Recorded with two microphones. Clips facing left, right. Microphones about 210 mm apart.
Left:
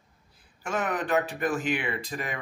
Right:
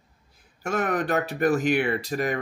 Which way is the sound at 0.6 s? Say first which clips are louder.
Right 4 dB; 40° right (ahead or behind).